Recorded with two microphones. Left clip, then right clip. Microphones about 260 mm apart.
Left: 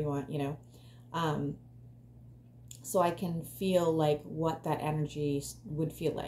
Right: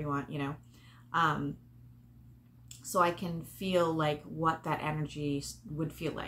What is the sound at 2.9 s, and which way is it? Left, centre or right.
Speech, centre.